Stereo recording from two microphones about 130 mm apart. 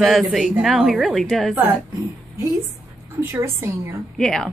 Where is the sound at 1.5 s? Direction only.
15° right (ahead or behind).